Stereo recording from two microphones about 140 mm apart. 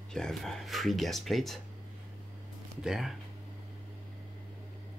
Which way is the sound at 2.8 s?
Centre (ahead or behind).